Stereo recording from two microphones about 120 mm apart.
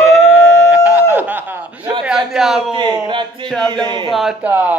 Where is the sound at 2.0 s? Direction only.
5° right (ahead or behind).